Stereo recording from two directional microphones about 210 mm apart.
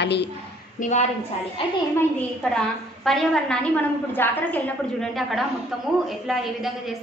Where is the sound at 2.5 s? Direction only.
Centre (ahead or behind).